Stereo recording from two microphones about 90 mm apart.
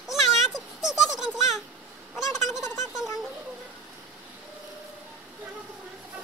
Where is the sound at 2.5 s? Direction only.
35° left (ahead or behind).